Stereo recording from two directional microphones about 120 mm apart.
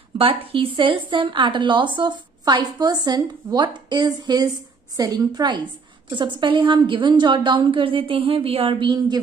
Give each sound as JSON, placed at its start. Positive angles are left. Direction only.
{"t": 0.2, "sound": "a woman's voice", "side_deg": -50}